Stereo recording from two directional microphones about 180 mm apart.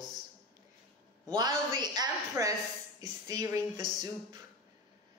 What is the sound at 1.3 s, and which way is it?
Speech, 25° right (ahead or behind).